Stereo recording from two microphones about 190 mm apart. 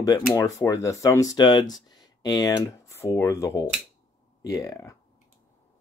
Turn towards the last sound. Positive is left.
turn(degrees=15)  # may be behind; listen again after turning